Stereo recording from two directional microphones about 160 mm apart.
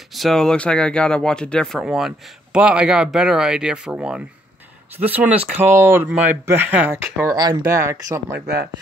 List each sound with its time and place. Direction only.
0.1 s speech: centre (ahead or behind)
7.3 s speech: 25° right (ahead or behind)